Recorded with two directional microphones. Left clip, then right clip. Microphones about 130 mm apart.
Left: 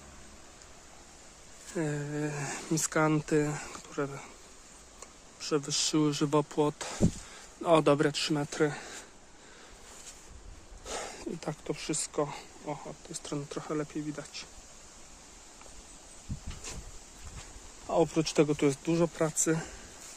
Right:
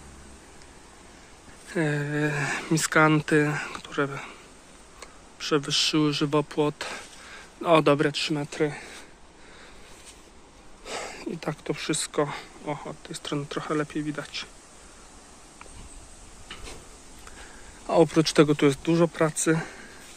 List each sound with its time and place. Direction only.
1.7 s speech: centre (ahead or behind); by 8.0 s 25° left (ahead or behind)
8.1 s speech: 50° left (ahead or behind)
10.9 s a sound: 30° left (ahead or behind)
11.4 s speech: 10° left (ahead or behind)
17.8 s speech: 15° right (ahead or behind); by 19.7 s centre (ahead or behind)